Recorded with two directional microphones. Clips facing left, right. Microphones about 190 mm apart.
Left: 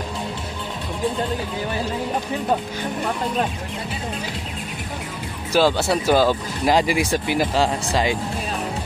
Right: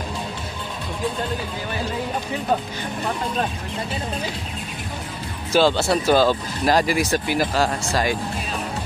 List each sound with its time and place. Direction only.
5.5 s speech: 10° left (ahead or behind)